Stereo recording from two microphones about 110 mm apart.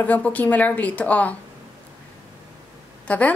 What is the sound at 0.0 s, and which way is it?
A woman's voice, 15° left (ahead or behind).